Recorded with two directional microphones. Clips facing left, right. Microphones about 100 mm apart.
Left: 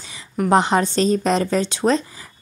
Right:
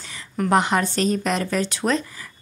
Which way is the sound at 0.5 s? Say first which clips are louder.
Left 3 dB; 25° left (ahead or behind).